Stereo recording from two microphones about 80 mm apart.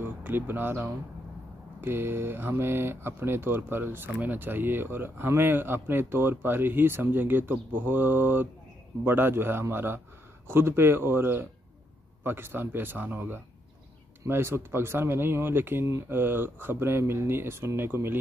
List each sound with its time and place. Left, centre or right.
0.0 s speech: right
14.2 s speech: right